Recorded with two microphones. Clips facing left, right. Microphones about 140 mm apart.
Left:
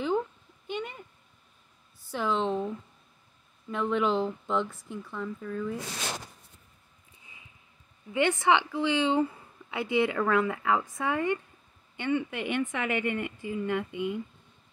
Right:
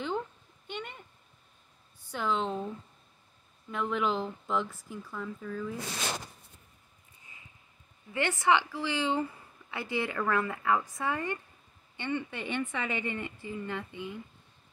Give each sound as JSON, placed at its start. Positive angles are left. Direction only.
{"t": 0.7, "sound": "speech", "side_deg": 0}
{"t": 2.0, "sound": "speech", "side_deg": 0}
{"t": 3.7, "sound": "speech", "side_deg": 0}
{"t": 8.1, "sound": "a woman's voice", "side_deg": 20}